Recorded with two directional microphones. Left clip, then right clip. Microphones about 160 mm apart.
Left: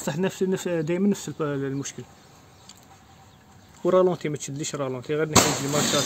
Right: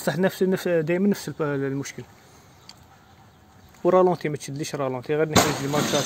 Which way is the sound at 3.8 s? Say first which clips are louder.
Right 2 dB; 15° right (ahead or behind).